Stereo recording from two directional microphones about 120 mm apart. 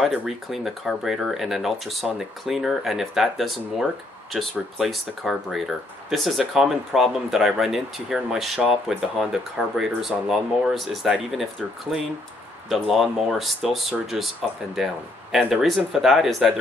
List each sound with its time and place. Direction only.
0.0 s speech: centre (ahead or behind)